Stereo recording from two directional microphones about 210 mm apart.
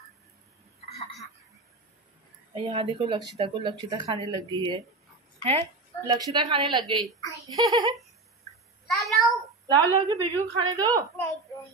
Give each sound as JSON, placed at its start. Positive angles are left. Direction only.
{"t": 0.7, "sound": "a sound", "side_deg": 30}
{"t": 2.5, "sound": "a woman's voice", "side_deg": -25}
{"t": 7.2, "sound": "giggle", "side_deg": 15}
{"t": 7.5, "sound": "speech", "side_deg": -20}
{"t": 8.9, "sound": "a child's voice", "side_deg": 0}
{"t": 9.7, "sound": "a woman's voice", "side_deg": -15}